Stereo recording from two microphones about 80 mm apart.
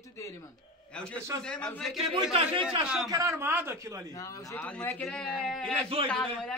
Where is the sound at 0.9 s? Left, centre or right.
Centre.